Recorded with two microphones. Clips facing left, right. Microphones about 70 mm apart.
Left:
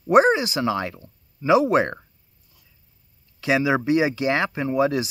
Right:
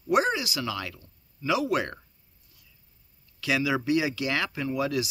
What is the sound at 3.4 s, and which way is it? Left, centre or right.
Speech, left.